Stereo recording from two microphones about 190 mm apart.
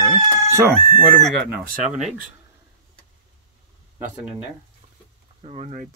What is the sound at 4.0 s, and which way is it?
Speech, 5° right (ahead or behind).